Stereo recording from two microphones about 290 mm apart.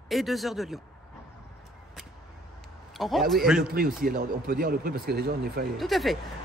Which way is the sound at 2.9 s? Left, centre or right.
Centre.